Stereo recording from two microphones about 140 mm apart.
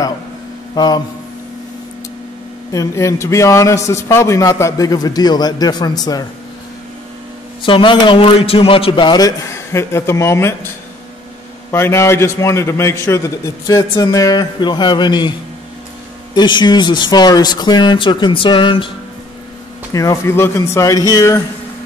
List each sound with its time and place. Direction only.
0.7 s a man's voice: 30° left (ahead or behind)
2.7 s a man's voice: 20° left (ahead or behind)
7.6 s a man's voice: 35° left (ahead or behind); by 10.7 s 20° left (ahead or behind)
11.7 s a man's voice: 20° left (ahead or behind)
16.3 s a man's voice: 30° left (ahead or behind)
19.9 s a man's voice: 25° left (ahead or behind)